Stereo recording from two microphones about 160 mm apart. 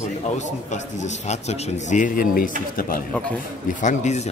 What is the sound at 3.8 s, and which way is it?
Speech, 45° left (ahead or behind).